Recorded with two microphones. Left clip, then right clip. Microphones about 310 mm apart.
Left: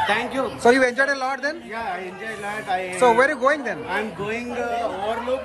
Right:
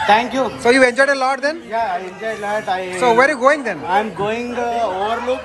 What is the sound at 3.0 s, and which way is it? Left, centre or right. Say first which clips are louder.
Speech: right 4 dB; centre.